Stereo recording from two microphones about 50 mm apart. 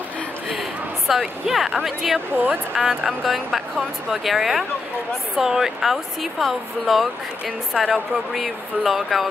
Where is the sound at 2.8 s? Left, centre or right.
Centre.